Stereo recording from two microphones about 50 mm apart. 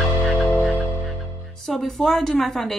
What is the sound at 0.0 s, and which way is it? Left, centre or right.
Music, centre.